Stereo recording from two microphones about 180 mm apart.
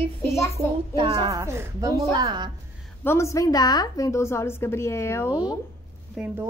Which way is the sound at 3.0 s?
15° left (ahead or behind).